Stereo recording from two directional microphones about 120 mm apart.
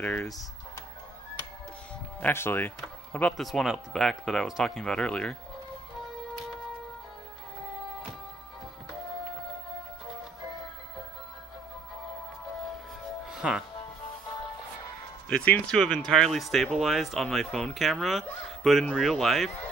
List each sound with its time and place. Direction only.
0.0 s speech: 15° left (ahead or behind)
2.1 s speech: 15° left (ahead or behind)
13.3 s music: 5° right (ahead or behind)
15.2 s speech: 10° left (ahead or behind)